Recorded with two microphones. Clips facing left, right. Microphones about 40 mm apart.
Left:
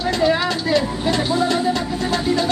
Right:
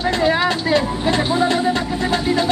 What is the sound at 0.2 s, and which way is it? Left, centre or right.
Vehicle, right.